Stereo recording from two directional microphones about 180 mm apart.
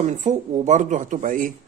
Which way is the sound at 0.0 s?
40° right (ahead or behind).